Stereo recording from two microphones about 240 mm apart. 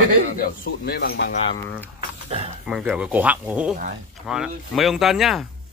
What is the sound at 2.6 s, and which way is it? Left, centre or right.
Speech, centre.